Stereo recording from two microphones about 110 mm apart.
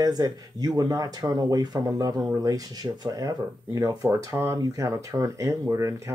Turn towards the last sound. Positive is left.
turn(degrees=-25)  # may be behind; listen again after turning